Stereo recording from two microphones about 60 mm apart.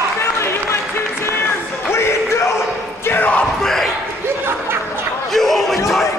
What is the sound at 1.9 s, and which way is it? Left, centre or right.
Music, left.